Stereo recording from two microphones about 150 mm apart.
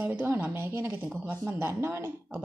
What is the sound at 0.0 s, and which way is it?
Speech, 15° right (ahead or behind).